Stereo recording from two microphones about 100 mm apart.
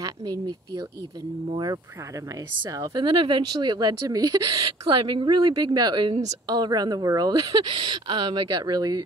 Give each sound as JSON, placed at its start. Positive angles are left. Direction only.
{"t": 0.0, "sound": "speech", "side_deg": -40}
{"t": 2.9, "sound": "speech", "side_deg": -55}